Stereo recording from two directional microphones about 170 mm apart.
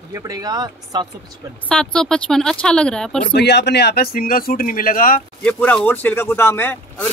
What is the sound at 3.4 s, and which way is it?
Speech, 90° left.